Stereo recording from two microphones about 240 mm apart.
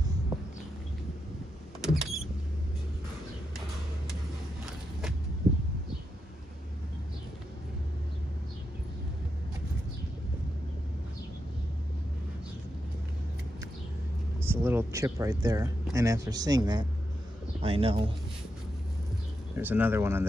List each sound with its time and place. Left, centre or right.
1.8 s power windows: centre
14.4 s speech: centre
19.5 s speech: centre